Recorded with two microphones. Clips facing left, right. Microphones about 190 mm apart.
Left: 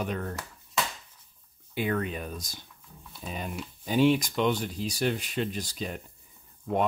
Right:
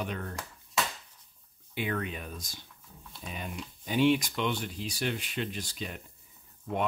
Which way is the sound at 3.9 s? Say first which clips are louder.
Left 2 dB; 40° left (ahead or behind).